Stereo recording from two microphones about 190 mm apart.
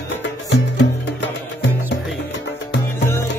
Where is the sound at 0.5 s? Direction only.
75° left (ahead or behind).